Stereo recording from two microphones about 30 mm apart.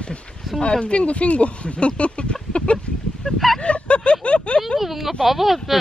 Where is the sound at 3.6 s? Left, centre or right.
Left.